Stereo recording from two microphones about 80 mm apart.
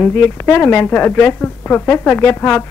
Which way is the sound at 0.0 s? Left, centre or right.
Left.